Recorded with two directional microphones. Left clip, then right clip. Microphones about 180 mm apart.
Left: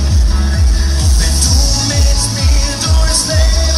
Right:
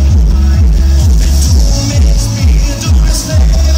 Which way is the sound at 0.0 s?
35° right (ahead or behind).